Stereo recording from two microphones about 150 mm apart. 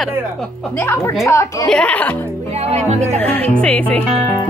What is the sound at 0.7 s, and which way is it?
Speech, 20° left (ahead or behind).